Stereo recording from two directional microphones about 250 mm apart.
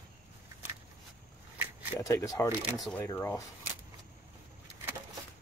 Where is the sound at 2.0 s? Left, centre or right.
Centre.